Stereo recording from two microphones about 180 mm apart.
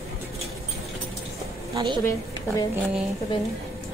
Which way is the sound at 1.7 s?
25° right (ahead or behind).